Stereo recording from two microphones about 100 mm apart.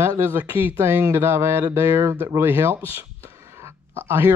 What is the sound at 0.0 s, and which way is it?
Speech, 25° right (ahead or behind).